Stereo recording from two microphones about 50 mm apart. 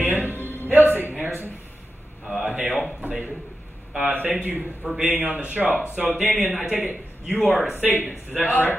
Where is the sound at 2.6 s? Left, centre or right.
Centre.